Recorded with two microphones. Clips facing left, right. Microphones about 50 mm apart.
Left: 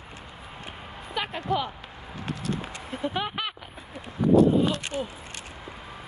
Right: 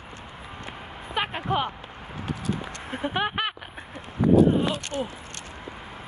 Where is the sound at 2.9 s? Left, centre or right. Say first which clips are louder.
Right 3 dB; right.